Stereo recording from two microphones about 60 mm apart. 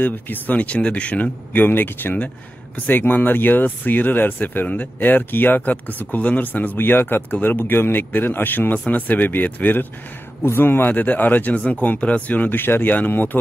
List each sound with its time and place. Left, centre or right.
0.0 s speech: left